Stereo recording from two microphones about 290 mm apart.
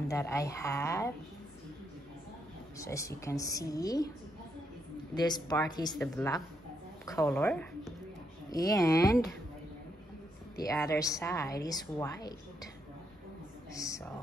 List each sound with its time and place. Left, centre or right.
0.1 s a woman's voice: centre
2.8 s a woman's voice: centre
5.1 s a woman's voice: centre
10.5 s a woman's voice: centre
13.7 s a woman's voice: centre